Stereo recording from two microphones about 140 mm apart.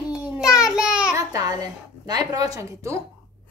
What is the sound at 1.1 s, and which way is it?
A woman's voice, 25° right (ahead or behind).